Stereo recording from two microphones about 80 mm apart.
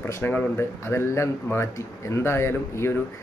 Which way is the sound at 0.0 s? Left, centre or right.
Left.